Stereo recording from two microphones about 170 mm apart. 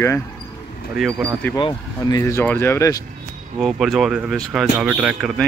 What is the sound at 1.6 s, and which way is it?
Speech, 25° left (ahead or behind).